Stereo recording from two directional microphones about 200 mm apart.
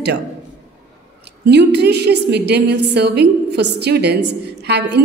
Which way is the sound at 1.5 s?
55° right (ahead or behind).